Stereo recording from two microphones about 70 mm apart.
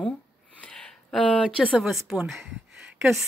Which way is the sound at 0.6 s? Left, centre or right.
Centre.